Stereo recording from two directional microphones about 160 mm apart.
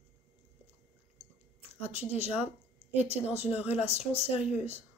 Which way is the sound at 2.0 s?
40° left (ahead or behind).